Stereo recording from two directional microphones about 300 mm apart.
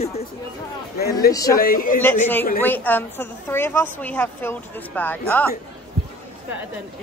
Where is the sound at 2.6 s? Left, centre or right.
Centre.